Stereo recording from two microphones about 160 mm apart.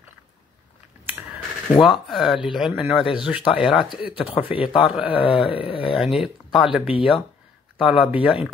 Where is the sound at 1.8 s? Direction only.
Centre (ahead or behind).